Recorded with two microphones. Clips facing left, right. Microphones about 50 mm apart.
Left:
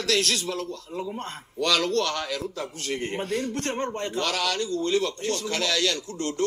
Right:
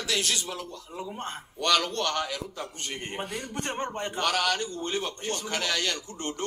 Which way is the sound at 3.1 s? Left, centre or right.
Centre.